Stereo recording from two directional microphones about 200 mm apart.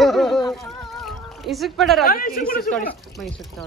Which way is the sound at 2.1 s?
45° left (ahead or behind).